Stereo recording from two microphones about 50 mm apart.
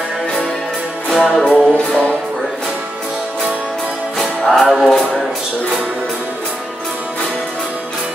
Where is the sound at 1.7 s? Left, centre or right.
Left.